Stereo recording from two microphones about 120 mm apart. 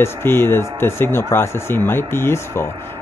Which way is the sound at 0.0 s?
20° left (ahead or behind).